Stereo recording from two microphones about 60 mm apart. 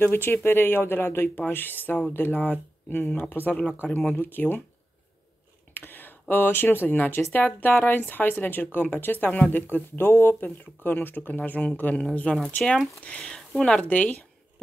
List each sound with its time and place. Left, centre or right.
0.0 s speech: left
5.8 s speech: left; by 13.8 s centre
13.8 s speech: left